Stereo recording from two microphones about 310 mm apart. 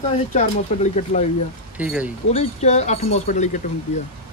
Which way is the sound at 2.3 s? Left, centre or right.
Left.